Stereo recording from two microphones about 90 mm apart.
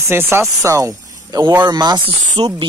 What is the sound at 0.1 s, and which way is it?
Speech, 25° right (ahead or behind).